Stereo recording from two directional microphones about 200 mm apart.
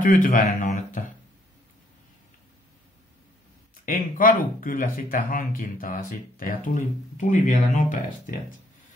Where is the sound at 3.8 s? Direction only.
45° left (ahead or behind).